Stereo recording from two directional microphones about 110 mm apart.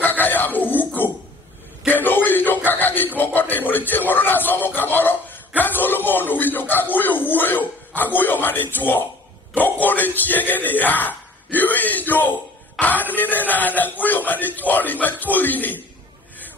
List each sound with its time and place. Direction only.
0.0 s a sound: 15° left (ahead or behind)
3.2 s music: 15° left (ahead or behind)
9.5 s a man's voice: 15° left (ahead or behind)